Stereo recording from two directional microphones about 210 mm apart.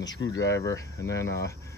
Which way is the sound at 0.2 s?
60° left (ahead or behind).